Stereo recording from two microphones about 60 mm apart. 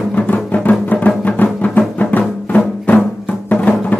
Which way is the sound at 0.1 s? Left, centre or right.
Left.